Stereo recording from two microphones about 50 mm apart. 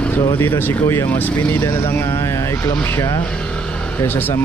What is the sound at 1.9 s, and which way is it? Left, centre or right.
Speech, left.